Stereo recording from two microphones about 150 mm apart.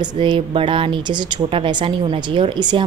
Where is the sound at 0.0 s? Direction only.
30° right (ahead or behind).